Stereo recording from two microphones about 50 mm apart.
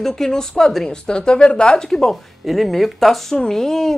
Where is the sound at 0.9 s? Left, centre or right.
Centre.